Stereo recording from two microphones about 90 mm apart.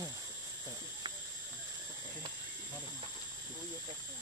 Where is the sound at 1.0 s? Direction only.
60° right (ahead or behind).